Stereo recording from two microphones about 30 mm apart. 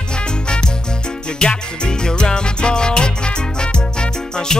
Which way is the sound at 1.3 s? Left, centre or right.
Left.